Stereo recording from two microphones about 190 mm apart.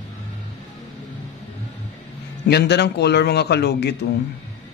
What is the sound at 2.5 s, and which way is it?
Speech, 60° left (ahead or behind).